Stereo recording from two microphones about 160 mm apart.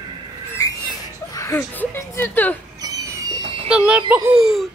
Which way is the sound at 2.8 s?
25° right (ahead or behind).